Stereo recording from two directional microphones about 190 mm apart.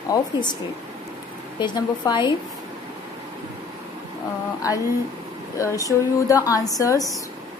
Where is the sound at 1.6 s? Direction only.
25° left (ahead or behind).